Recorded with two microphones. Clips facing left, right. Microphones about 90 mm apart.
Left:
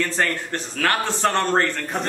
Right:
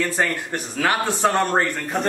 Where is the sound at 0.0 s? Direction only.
10° right (ahead or behind).